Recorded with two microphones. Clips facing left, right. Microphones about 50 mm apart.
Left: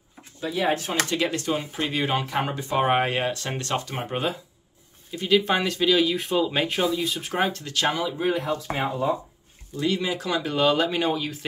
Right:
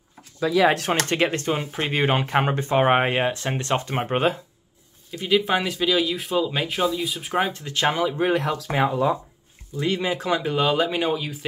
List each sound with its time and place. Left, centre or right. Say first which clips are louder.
0.5 s speech: right 6 dB; right
1.0 s speech: right 3 dB; right
5.1 s speech: even; centre
7.5 s speech: right 2 dB; right
8.4 s speech: right 4 dB; right
9.8 s speech: right 1 dB; right
10.5 s speech: left 2 dB; centre